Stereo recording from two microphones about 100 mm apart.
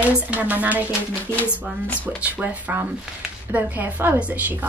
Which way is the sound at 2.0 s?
15° right (ahead or behind).